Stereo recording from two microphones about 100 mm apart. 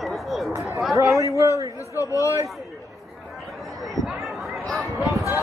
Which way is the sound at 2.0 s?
35° left (ahead or behind).